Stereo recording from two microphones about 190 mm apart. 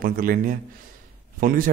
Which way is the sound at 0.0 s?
50° right (ahead or behind).